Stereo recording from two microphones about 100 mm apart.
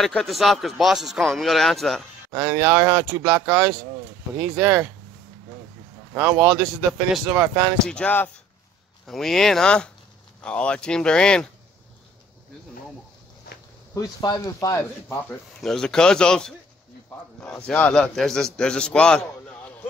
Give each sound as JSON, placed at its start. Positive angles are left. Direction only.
{"t": 0.0, "sound": "a man's voice", "side_deg": 5}
{"t": 2.3, "sound": "speech", "side_deg": -25}
{"t": 2.7, "sound": "speech", "side_deg": -35}
{"t": 4.6, "sound": "speech", "side_deg": -5}
{"t": 6.1, "sound": "speech", "side_deg": -15}
{"t": 6.4, "sound": "a man's voice", "side_deg": -5}
{"t": 7.2, "sound": "speech", "side_deg": -20}
{"t": 7.8, "sound": "a man's voice", "side_deg": 10}
{"t": 9.0, "sound": "a man's voice", "side_deg": 5}
{"t": 13.9, "sound": "speech", "side_deg": 40}
{"t": 15.6, "sound": "a man's voice", "side_deg": 5}